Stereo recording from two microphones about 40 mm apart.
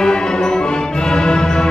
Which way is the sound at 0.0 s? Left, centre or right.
Centre.